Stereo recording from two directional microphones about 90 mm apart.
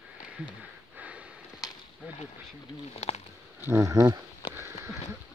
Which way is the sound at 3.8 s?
40° right (ahead or behind).